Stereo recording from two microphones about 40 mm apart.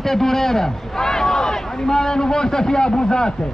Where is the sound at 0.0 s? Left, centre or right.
Centre.